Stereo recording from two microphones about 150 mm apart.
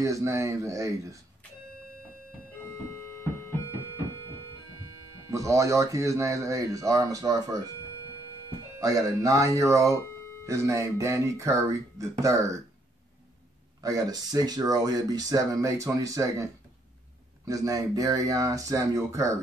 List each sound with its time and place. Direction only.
0.0 s speech: 20° right (ahead or behind)
2.6 s music: 15° left (ahead or behind)
5.3 s speech: 20° right (ahead or behind)
8.7 s speech: 20° right (ahead or behind)
9.9 s a sound: 15° left (ahead or behind)
10.4 s speech: 20° right (ahead or behind)
13.7 s speech: 25° right (ahead or behind)
17.5 s speech: 25° right (ahead or behind)